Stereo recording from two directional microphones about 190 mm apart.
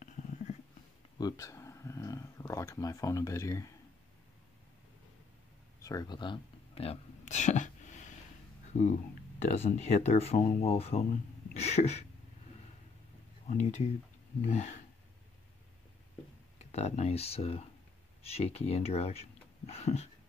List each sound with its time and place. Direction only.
0.0 s a sound: 40° left (ahead or behind)
1.1 s speech: 20° left (ahead or behind)
5.8 s a sound: 20° left (ahead or behind); by 8.2 s 40° left (ahead or behind)
9.4 s speech: 35° left (ahead or behind)
13.5 s speech: 40° left (ahead or behind)
16.5 s speech: 35° left (ahead or behind)